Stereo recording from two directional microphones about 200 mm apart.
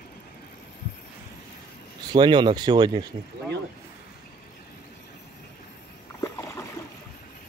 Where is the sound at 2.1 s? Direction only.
25° right (ahead or behind).